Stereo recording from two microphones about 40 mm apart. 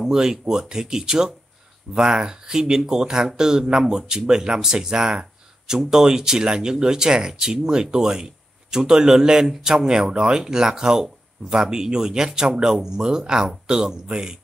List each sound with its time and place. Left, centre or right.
0.0 s speech: centre